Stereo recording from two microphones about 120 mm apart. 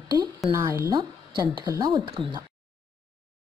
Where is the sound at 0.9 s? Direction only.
35° right (ahead or behind).